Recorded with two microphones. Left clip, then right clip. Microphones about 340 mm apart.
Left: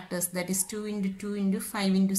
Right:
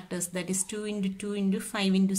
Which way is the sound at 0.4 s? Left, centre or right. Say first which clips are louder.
Right 1 dB; right.